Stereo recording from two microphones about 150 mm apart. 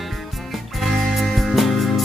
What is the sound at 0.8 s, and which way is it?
Music, centre (ahead or behind).